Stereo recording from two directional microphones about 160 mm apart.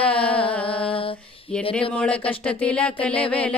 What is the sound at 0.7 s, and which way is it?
Speech, 35° left (ahead or behind).